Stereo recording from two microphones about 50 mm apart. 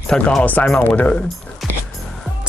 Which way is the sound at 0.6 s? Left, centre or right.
Left.